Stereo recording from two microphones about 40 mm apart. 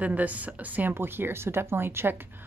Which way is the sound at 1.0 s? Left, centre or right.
Right.